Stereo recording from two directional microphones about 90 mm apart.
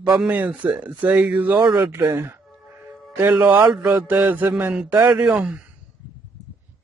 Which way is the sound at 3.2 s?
15° right (ahead or behind).